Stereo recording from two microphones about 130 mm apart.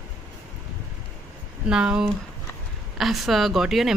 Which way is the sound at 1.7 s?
5° right (ahead or behind).